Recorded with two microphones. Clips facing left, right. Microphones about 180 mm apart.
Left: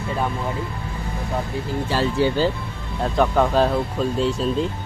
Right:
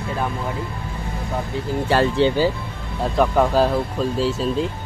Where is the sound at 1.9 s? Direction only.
65° right (ahead or behind).